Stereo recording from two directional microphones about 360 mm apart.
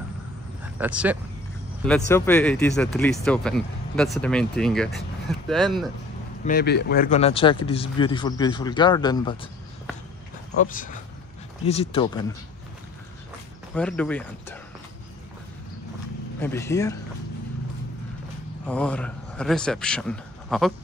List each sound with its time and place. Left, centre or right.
0.7 s speech: centre
6.4 s speech: left
10.6 s speech: left
13.7 s speech: centre
16.3 s speech: centre
18.7 s a man's voice: centre